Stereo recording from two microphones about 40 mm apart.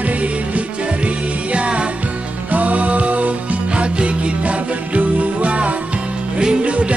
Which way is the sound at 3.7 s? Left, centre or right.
Right.